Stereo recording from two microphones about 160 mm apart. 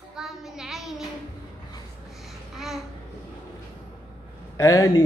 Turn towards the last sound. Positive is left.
turn(degrees=20)  # may be behind; listen again after turning